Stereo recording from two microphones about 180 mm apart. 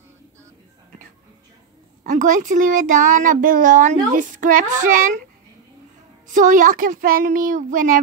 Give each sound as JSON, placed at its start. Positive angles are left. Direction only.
{"t": 2.0, "sound": "a child's voice", "side_deg": -45}
{"t": 6.3, "sound": "a child's voice", "side_deg": -45}